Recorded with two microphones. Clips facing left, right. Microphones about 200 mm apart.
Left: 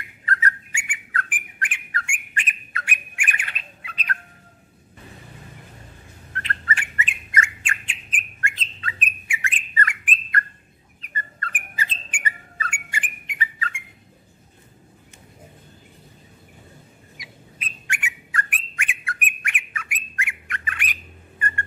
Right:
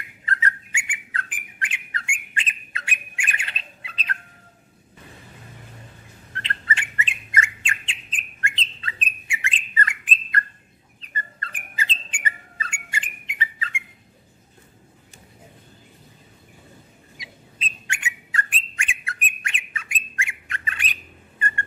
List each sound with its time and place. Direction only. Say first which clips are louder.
0.3 s bird: left 2 dB; 25° right (ahead or behind)
6.3 s bird: left 1 dB; 25° right (ahead or behind)
12.5 s dog: left 2 dB; 25° right (ahead or behind)
17.2 s bird: right 2 dB; 25° right (ahead or behind)